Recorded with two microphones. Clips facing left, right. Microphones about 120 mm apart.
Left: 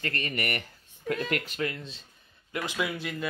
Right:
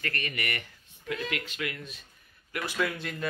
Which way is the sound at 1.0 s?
45° left (ahead or behind).